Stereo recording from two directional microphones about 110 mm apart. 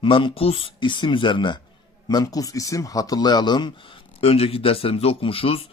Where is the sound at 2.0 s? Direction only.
35° left (ahead or behind).